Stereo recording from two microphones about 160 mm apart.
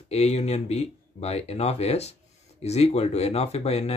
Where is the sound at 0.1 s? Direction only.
40° left (ahead or behind).